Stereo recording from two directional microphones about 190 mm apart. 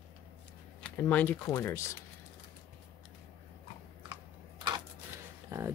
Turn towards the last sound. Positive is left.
turn(degrees=-15)  # may be behind; listen again after turning